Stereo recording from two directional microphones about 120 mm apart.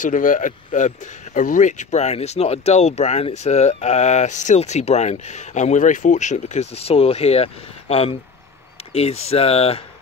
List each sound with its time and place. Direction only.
0.0 s speech: 90° left; by 9.8 s 55° left (ahead or behind)